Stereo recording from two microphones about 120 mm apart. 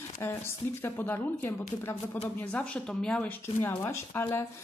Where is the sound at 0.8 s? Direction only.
15° left (ahead or behind).